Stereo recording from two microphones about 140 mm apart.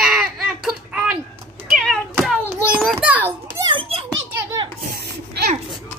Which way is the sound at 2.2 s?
Centre (ahead or behind).